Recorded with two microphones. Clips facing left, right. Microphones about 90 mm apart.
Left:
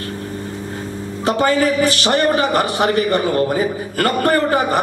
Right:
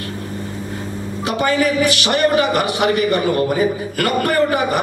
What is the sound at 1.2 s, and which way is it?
A man's voice, 35° left (ahead or behind).